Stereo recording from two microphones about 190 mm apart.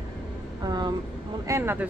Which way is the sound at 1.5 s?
10° right (ahead or behind).